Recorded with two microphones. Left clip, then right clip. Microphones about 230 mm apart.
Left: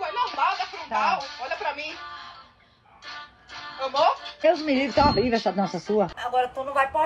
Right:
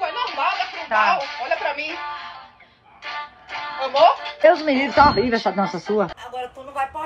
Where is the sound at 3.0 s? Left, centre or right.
Centre.